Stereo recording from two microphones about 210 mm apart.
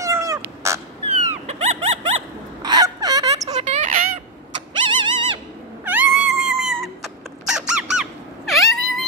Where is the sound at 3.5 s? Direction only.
35° right (ahead or behind).